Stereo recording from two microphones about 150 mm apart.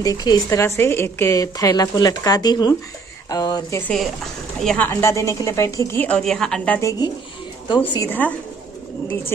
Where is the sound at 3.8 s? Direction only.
Centre (ahead or behind).